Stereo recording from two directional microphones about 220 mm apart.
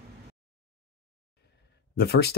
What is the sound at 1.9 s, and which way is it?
Speech, 45° left (ahead or behind).